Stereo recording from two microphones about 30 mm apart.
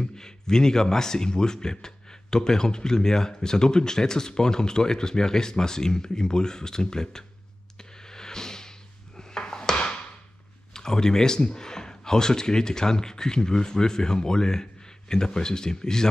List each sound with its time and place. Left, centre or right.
0.0 s speech: left
8.1 s a sound: left
10.7 s speech: left